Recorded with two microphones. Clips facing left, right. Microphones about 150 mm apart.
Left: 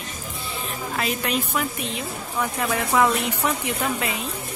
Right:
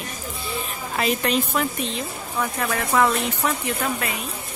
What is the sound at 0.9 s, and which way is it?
Speech, centre (ahead or behind).